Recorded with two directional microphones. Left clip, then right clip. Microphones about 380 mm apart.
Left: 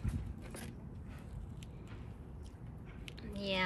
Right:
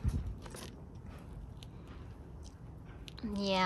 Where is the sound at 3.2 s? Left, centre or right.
Centre.